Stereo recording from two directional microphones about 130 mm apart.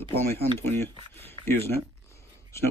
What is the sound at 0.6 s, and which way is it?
Speech, 15° left (ahead or behind).